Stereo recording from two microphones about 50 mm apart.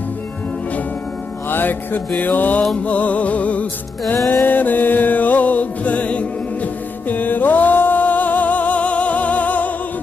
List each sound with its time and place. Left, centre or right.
1.5 s music: left
4.3 s music: left